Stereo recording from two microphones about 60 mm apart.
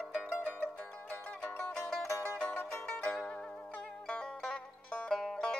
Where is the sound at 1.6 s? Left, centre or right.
Centre.